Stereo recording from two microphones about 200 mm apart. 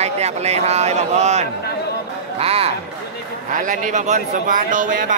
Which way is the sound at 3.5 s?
40° right (ahead or behind).